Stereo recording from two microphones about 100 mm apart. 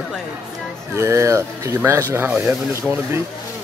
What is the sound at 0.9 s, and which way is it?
A man's voice, 25° right (ahead or behind).